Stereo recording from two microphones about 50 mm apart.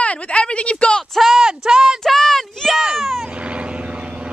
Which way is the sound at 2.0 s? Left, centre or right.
Centre.